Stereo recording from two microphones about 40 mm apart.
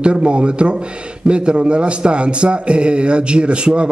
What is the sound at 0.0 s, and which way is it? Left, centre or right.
A man's voice, right.